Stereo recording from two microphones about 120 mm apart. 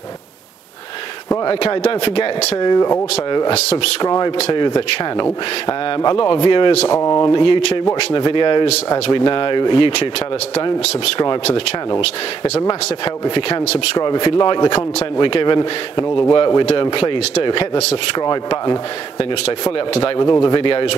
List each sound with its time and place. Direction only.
1.4 s a man's voice: 40° left (ahead or behind)
2.0 s speech: 50° left (ahead or behind)
2.5 s a man's voice: 35° left (ahead or behind)
3.4 s speech: 60° left (ahead or behind)
3.7 s a man's voice: 40° left (ahead or behind)
6.1 s speech: 45° left (ahead or behind)
6.9 s speech: 25° left (ahead or behind)
7.2 s speech: 45° left (ahead or behind)
12.0 s speech: 60° left (ahead or behind)
13.0 s a man's voice: 45° left (ahead or behind)
19.9 s a man's voice: 40° left (ahead or behind)